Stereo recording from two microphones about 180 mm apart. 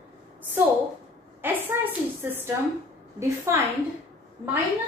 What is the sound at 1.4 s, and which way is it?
A woman's voice, 10° right (ahead or behind).